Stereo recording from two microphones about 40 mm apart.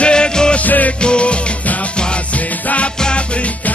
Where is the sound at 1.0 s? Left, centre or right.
Left.